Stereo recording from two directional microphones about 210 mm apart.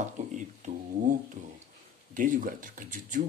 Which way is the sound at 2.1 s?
40° right (ahead or behind).